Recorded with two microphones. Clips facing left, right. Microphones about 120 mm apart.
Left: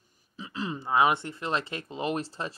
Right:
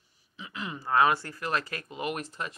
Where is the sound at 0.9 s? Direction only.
20° left (ahead or behind).